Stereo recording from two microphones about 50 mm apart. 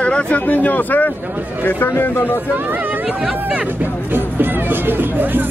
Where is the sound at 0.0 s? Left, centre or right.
Left.